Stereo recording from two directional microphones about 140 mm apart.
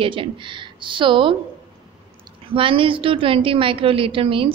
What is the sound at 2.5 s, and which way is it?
A woman's voice, 40° right (ahead or behind).